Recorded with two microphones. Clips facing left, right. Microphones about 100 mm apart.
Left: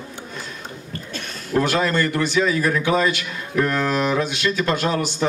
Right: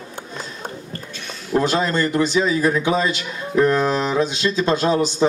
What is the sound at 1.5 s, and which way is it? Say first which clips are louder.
A man's voice: right 1 dB; 20° right (ahead or behind).